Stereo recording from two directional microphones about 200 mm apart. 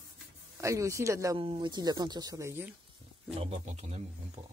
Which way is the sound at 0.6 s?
15° right (ahead or behind).